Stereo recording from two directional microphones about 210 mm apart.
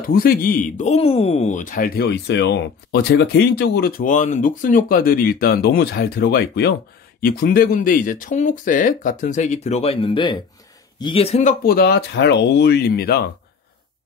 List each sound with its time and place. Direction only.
0.0 s a man's voice: 45° left (ahead or behind)
11.6 s speech: 45° left (ahead or behind)